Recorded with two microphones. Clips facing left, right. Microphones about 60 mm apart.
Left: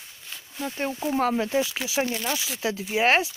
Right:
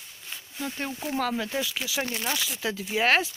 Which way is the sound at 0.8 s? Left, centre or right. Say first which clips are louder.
Left 5 dB; left.